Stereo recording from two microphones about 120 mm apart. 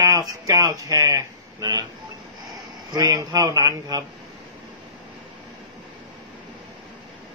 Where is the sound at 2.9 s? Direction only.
30° right (ahead or behind).